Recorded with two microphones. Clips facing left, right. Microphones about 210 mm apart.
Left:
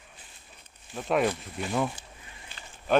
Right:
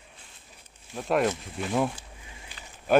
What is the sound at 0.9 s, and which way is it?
Speech, centre (ahead or behind).